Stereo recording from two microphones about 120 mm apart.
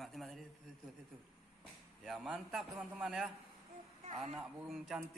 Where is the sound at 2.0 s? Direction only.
Centre (ahead or behind).